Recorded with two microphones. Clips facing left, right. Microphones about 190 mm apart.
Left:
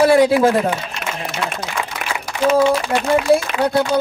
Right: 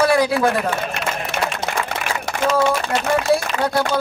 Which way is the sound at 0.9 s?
60° right (ahead or behind).